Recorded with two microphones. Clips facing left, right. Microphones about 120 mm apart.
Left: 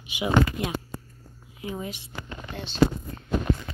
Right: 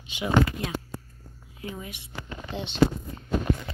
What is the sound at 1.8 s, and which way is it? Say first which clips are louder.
Speech: left 5 dB; 30° left (ahead or behind).